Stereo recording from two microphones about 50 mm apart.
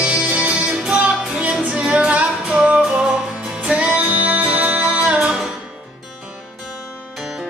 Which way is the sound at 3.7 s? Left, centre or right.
Right.